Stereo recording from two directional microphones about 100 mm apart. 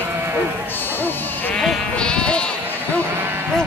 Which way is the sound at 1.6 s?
5° left (ahead or behind).